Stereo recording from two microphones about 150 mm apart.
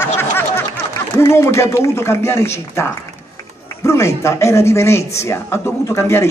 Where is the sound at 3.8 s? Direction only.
20° left (ahead or behind).